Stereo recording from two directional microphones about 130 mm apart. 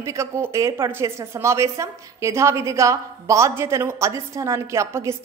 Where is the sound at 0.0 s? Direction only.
20° right (ahead or behind).